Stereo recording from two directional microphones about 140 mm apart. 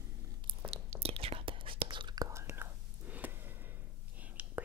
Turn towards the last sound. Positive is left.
turn(degrees=-10)  # may be behind; listen again after turning